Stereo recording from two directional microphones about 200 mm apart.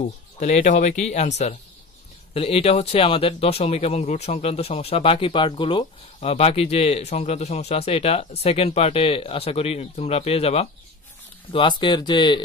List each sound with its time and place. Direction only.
0.4 s speech: 35° left (ahead or behind)